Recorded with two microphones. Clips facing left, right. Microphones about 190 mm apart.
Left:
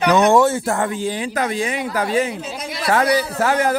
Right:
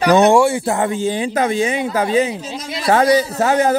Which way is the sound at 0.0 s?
30° right (ahead or behind).